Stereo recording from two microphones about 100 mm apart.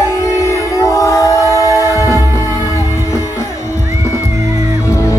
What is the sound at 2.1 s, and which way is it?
Music, 35° right (ahead or behind).